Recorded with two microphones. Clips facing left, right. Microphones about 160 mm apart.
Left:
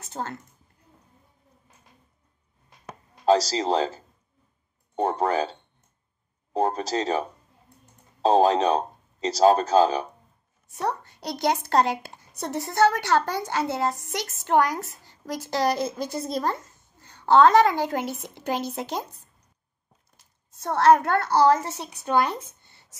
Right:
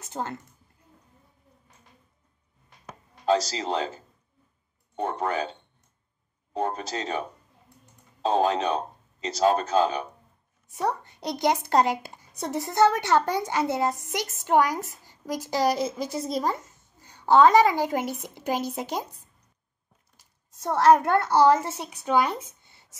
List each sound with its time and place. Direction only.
0.1 s a woman's voice: 15° right (ahead or behind)
3.3 s a man's voice: 35° left (ahead or behind)
10.7 s a woman's voice: 15° right (ahead or behind)
20.6 s a woman's voice: 15° right (ahead or behind)